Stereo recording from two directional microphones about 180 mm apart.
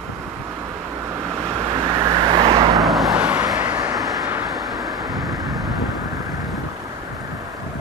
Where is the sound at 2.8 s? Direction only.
Centre (ahead or behind).